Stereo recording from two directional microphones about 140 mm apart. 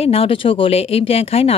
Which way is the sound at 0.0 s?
45° left (ahead or behind).